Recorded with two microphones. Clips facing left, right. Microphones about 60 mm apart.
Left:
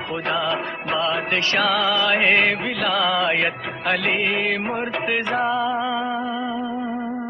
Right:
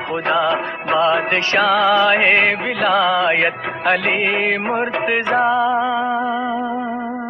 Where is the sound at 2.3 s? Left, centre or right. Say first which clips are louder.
Right 3 dB; centre.